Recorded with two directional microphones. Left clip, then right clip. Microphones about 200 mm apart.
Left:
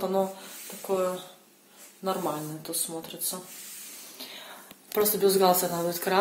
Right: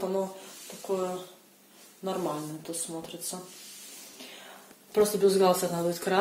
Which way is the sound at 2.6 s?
5° left (ahead or behind).